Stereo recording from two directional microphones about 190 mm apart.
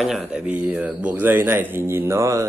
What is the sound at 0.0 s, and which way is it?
Speech, 5° right (ahead or behind).